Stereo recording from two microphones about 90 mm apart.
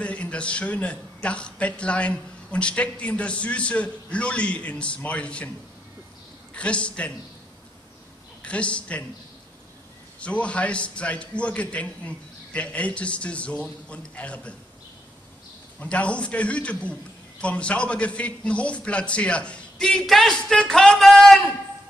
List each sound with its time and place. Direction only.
0.0 s a man's voice: 15° left (ahead or behind)
6.5 s a man's voice: 15° left (ahead or behind)
8.4 s a woman's voice: 15° left (ahead or behind)
10.2 s a man's voice: 15° left (ahead or behind)
15.8 s a man's voice: 15° left (ahead or behind)